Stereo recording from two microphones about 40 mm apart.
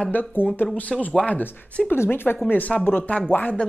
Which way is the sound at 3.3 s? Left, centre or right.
Left.